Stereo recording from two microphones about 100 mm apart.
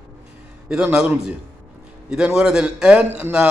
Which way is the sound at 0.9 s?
10° right (ahead or behind).